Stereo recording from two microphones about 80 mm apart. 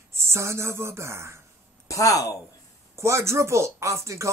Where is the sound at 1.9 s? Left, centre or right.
Left.